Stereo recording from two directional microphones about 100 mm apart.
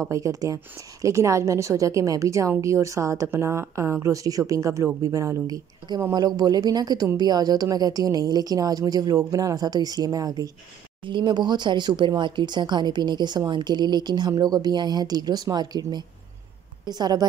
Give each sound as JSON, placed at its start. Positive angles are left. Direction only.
{"t": 0.0, "sound": "speech", "side_deg": -35}
{"t": 11.1, "sound": "speech", "side_deg": -50}